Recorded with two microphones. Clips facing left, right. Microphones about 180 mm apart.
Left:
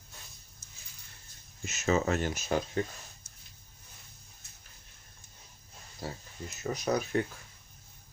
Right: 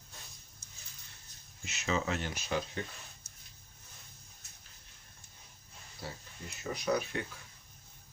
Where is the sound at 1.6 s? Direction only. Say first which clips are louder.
Left 6 dB; 45° left (ahead or behind).